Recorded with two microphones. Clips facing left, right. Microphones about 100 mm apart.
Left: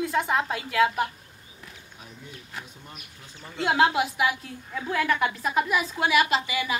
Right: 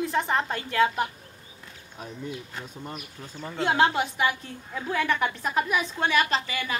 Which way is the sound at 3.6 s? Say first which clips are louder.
Left 1 dB; 5° left (ahead or behind).